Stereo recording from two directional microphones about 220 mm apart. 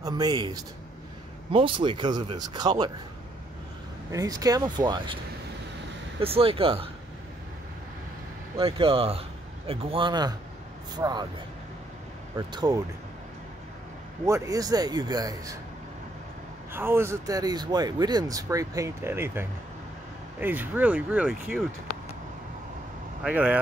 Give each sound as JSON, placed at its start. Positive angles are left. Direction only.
{"t": 0.0, "sound": "speech", "side_deg": -15}
{"t": 4.1, "sound": "speech", "side_deg": -15}
{"t": 6.2, "sound": "speech", "side_deg": -25}
{"t": 8.5, "sound": "speech", "side_deg": -25}
{"t": 12.4, "sound": "speech", "side_deg": -20}
{"t": 14.2, "sound": "speech", "side_deg": -15}
{"t": 16.7, "sound": "speech", "side_deg": -10}
{"t": 23.2, "sound": "speech", "side_deg": -5}